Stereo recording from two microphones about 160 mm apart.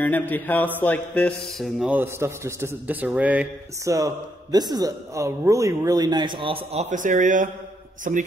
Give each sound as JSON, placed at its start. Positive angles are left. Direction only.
{"t": 0.0, "sound": "music", "side_deg": 10}
{"t": 2.0, "sound": "a man's voice", "side_deg": -15}
{"t": 3.8, "sound": "a man's voice", "side_deg": -20}